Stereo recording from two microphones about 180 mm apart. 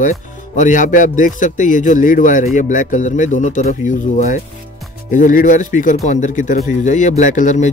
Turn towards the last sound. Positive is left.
turn(degrees=45)  # may be behind; listen again after turning